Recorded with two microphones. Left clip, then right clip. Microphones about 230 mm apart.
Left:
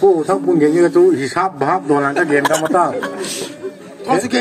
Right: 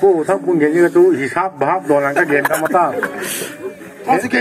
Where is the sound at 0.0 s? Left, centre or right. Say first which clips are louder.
Even; left.